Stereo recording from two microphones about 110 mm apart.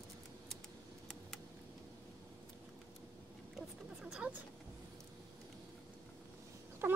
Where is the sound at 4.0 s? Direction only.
10° right (ahead or behind).